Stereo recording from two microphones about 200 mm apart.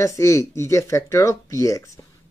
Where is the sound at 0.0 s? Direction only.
15° left (ahead or behind).